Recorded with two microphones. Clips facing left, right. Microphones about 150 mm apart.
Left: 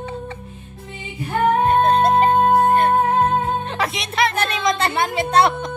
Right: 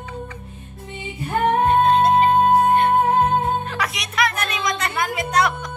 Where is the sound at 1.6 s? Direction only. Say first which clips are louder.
Right 2 dB; 40° left (ahead or behind).